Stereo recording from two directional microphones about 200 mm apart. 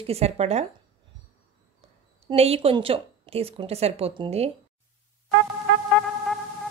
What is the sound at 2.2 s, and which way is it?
Speech, 30° right (ahead or behind).